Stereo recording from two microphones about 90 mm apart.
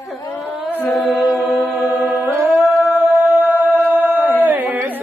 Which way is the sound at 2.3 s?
20° right (ahead or behind).